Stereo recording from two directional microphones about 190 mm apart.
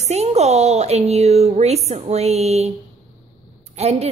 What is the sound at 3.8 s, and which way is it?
Speech, 35° right (ahead or behind).